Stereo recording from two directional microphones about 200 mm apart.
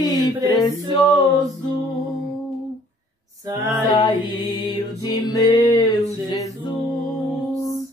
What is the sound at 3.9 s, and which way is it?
Music, 20° left (ahead or behind).